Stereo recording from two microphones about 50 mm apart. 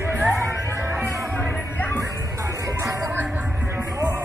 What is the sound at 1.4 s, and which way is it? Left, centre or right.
Music, left.